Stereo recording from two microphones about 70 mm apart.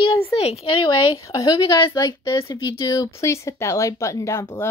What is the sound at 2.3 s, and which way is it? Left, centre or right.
Speech, left.